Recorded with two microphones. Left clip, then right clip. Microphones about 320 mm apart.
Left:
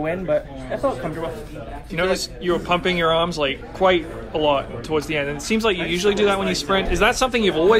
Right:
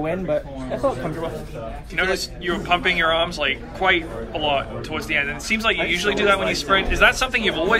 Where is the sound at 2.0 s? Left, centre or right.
Centre.